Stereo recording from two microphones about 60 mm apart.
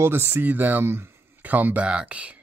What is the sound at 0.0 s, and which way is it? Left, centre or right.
Speech, right.